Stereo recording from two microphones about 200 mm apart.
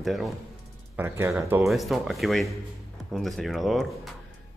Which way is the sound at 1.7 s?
Centre (ahead or behind).